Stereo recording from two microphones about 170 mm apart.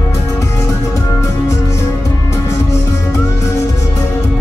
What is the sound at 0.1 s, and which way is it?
Music, 20° left (ahead or behind).